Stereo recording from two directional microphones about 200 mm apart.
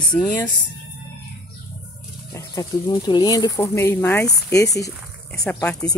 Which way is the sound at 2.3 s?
20° left (ahead or behind).